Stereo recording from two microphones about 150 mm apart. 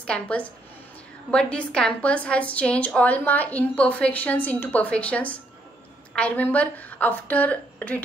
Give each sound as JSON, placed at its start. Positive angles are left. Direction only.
{"t": 0.0, "sound": "a woman's voice", "side_deg": 10}